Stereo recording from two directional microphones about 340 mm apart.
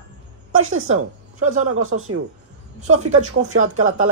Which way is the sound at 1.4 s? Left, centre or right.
Right.